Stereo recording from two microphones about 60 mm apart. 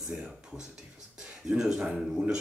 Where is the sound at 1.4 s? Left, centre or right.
Centre.